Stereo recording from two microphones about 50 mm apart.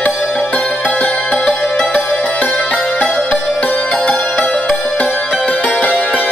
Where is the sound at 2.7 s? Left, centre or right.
Left.